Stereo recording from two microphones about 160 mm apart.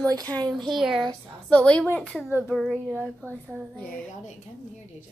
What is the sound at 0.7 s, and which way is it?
A woman's voice, centre (ahead or behind).